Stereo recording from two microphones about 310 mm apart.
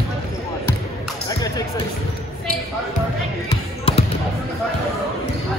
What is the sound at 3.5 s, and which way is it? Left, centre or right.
Music, centre.